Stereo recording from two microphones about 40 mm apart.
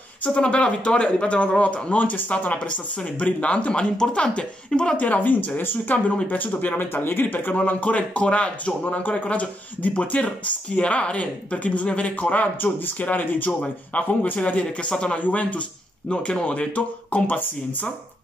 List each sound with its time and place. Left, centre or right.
0.2 s speech: left
3.2 s speech: left
4.9 s speech: left
5.6 s speech: left
6.2 s speech: left
6.9 s speech: left
7.5 s speech: left
10.8 s speech: left
12.5 s speech: left
13.6 s speech: left
15.1 s speech: left
16.1 s speech: left